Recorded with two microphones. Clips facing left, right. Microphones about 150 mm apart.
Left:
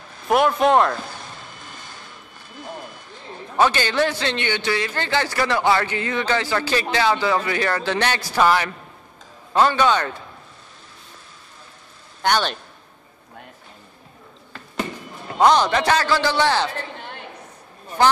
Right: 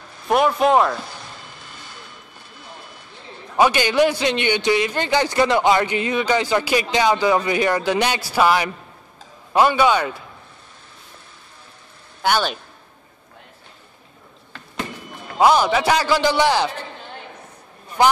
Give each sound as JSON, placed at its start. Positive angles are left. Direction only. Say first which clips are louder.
{"t": 0.3, "sound": "speech", "louder": "even", "side_deg": 0}
{"t": 3.5, "sound": "a man's voice", "louder": "right 3 dB", "side_deg": -15}
{"t": 12.2, "sound": "a man's voice", "louder": "right 1 dB", "side_deg": -5}
{"t": 15.3, "sound": "a man's voice", "louder": "right 1 dB", "side_deg": -5}
{"t": 18.0, "sound": "a man's voice", "louder": "right 1 dB", "side_deg": -10}